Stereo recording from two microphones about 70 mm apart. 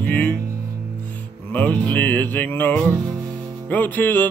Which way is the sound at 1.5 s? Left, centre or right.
Left.